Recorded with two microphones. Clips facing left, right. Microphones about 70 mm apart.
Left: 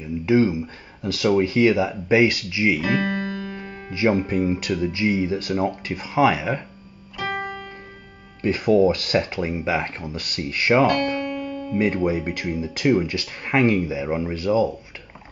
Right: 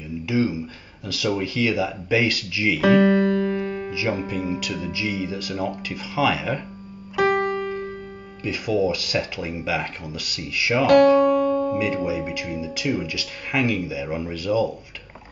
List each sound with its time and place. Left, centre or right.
0.2 s speech: left
2.8 s music: right
3.9 s speech: left
8.4 s speech: left
10.9 s music: right
11.8 s speech: left